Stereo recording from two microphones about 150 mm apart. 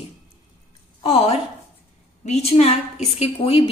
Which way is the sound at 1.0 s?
40° left (ahead or behind).